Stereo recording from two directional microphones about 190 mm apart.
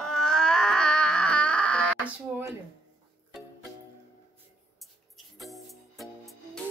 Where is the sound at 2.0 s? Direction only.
15° right (ahead or behind).